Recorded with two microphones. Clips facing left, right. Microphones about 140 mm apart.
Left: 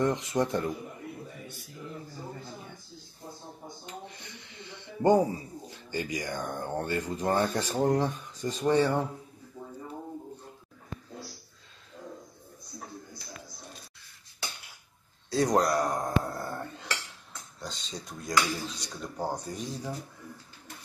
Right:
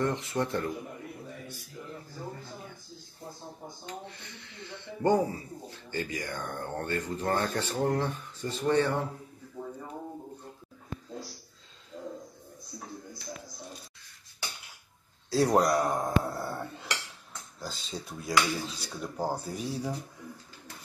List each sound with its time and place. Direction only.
0.0 s speech: 15° left (ahead or behind)
3.8 s a sound: 15° left (ahead or behind)
5.0 s speech: 20° left (ahead or behind)
15.2 s dishes: centre (ahead or behind)
17.6 s speech: 5° right (ahead or behind)